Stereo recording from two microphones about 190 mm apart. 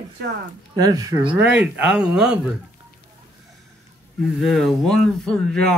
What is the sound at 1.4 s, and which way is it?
Speech, 5° right (ahead or behind).